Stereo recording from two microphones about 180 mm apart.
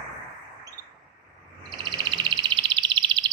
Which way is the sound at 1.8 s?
25° right (ahead or behind).